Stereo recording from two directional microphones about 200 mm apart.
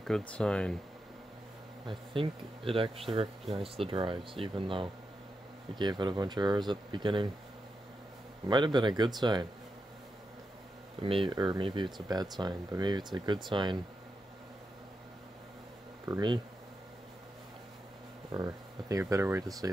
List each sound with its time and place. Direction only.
0.3 s speech: 5° left (ahead or behind)
1.9 s speech: 25° right (ahead or behind)
8.5 s speech: 20° right (ahead or behind)
11.0 s speech: 25° right (ahead or behind)
16.1 s speech: 20° right (ahead or behind)
18.3 s speech: 15° right (ahead or behind)